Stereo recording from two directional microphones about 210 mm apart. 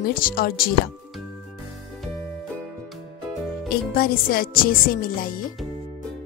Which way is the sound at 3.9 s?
45° left (ahead or behind).